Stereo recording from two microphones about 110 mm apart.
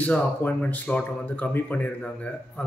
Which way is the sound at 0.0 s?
15° left (ahead or behind).